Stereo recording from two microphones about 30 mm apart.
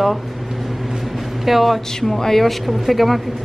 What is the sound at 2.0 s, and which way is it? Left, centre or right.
Speech, centre.